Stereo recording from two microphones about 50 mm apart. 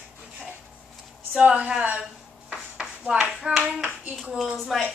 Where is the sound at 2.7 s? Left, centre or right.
Right.